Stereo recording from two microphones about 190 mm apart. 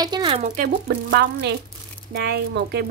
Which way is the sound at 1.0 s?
60° right (ahead or behind).